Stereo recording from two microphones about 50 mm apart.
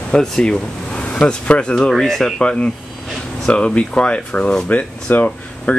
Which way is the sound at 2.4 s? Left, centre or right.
Left.